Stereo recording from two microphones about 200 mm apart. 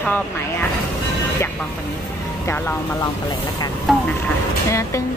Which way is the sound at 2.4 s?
10° left (ahead or behind).